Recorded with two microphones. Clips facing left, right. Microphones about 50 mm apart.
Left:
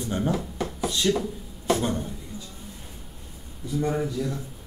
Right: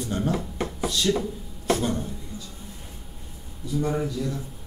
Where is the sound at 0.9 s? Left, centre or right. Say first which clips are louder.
Even; left.